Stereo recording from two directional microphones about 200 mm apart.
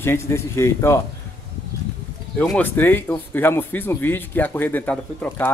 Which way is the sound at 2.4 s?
5° left (ahead or behind).